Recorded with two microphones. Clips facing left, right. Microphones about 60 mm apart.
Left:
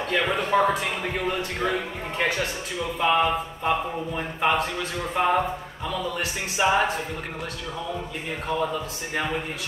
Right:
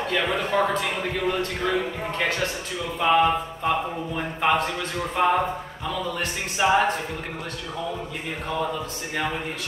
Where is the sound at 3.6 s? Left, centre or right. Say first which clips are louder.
Even; centre.